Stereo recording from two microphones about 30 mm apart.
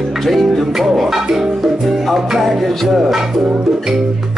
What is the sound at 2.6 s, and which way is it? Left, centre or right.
Music, centre.